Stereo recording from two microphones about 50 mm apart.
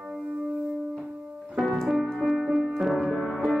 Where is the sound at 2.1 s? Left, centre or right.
Centre.